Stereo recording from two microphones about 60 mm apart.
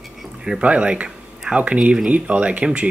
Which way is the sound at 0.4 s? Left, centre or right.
Centre.